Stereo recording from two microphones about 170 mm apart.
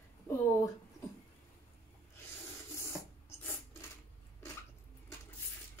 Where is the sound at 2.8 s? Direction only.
15° left (ahead or behind).